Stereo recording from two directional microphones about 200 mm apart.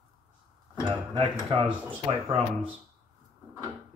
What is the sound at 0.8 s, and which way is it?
Speech, 25° right (ahead or behind).